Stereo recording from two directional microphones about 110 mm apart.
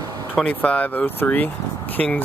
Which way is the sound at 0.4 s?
10° left (ahead or behind).